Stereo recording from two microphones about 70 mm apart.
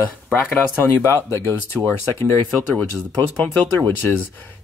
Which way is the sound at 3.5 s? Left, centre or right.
Left.